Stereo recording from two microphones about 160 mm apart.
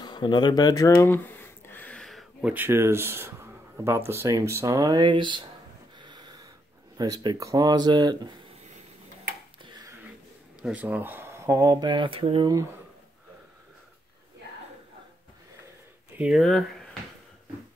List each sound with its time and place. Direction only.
0.0 s a sound: 25° left (ahead or behind); by 2.5 s centre (ahead or behind)
2.5 s speech: 15° right (ahead or behind); by 5.5 s 30° right (ahead or behind)
5.9 s snort: 25° right (ahead or behind)
7.0 s speech: 25° right (ahead or behind)
9.6 s a sound: 25° right (ahead or behind)
10.6 s speech: 10° right (ahead or behind); by 12.6 s 30° right (ahead or behind)
16.2 s speech: centre (ahead or behind)